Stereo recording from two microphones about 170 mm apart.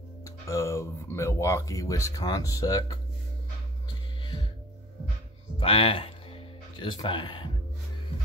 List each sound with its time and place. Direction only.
0.2 s speech: 15° left (ahead or behind)
4.2 s music: 25° left (ahead or behind)
5.6 s music: 35° left (ahead or behind)